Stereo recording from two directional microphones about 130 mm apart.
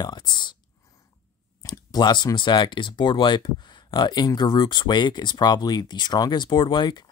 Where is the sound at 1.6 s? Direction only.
30° left (ahead or behind).